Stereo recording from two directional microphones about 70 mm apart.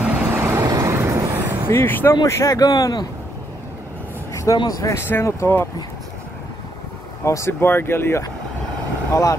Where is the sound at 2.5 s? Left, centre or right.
Left.